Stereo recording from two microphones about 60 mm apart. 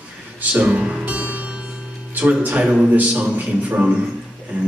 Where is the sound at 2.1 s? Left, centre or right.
Right.